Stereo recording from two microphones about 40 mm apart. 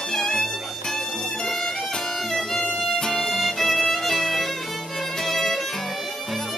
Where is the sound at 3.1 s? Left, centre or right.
Centre.